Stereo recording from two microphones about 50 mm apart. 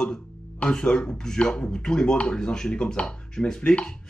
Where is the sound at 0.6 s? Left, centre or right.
Centre.